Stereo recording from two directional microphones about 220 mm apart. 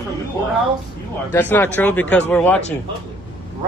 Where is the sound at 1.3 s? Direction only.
10° left (ahead or behind).